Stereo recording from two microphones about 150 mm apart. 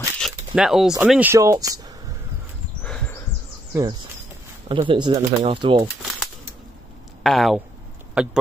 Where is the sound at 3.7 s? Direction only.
25° right (ahead or behind).